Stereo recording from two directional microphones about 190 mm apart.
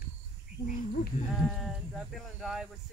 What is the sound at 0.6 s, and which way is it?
Speech, 45° left (ahead or behind).